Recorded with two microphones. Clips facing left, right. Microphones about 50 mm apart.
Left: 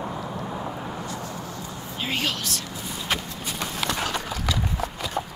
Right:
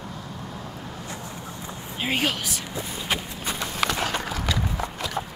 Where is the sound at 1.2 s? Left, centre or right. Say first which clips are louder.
Left 2 dB; right.